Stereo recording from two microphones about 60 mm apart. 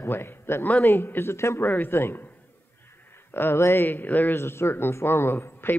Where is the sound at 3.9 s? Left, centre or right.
Left.